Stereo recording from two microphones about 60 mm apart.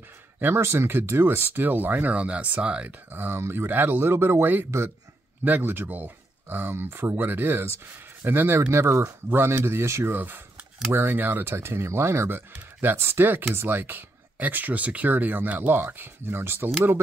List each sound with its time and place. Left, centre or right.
0.4 s speech: right
3.1 s speech: right
8.7 s speech: right
9.3 s speech: right
10.1 s speech: right